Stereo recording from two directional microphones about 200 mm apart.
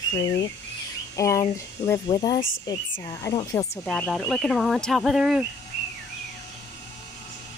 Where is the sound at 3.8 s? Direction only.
5° left (ahead or behind).